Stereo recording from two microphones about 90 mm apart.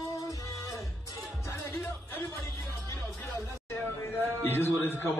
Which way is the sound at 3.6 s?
25° left (ahead or behind).